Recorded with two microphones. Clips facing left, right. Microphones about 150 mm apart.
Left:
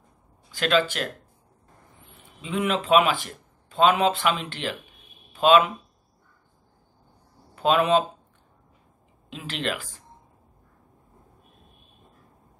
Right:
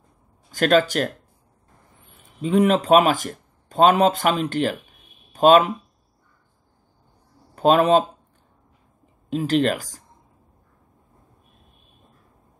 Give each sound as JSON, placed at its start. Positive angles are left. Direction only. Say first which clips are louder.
{"t": 0.5, "sound": "speech", "louder": "right 5 dB", "side_deg": -45}
{"t": 2.4, "sound": "speech", "louder": "right 8 dB", "side_deg": -40}
{"t": 7.5, "sound": "speech", "louder": "right 4 dB", "side_deg": -40}
{"t": 9.3, "sound": "speech", "louder": "right 10 dB", "side_deg": -40}